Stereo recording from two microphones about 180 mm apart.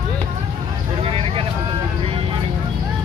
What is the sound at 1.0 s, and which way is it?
Vehicle, 30° right (ahead or behind).